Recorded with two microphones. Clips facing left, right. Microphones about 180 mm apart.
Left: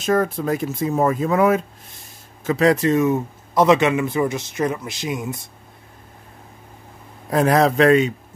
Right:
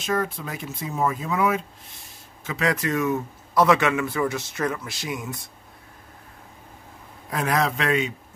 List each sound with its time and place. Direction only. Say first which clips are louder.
0.0 s speech: left 7 dB; 45° left (ahead or behind)
2.4 s speech: left 8 dB; 35° left (ahead or behind)
7.2 s a man's voice: left 8 dB; 35° left (ahead or behind)